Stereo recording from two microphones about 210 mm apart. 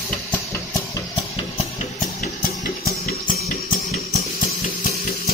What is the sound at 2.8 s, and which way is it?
Music, 45° left (ahead or behind).